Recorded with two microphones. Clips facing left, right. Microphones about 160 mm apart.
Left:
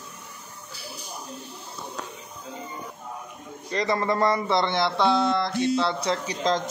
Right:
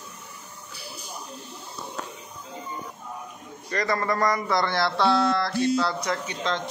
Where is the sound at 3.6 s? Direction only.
25° left (ahead or behind).